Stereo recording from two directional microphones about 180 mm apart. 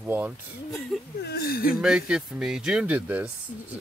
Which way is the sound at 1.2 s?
60° left (ahead or behind).